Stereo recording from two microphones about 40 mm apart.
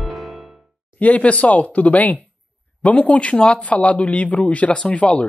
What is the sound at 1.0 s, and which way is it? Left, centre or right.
A woman's voice, left.